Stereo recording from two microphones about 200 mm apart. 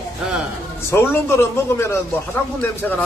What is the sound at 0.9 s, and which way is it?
A man's voice, 10° left (ahead or behind).